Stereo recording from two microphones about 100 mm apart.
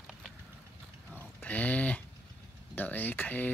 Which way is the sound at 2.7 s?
20° left (ahead or behind).